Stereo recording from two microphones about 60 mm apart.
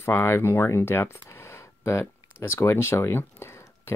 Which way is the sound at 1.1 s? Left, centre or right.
Left.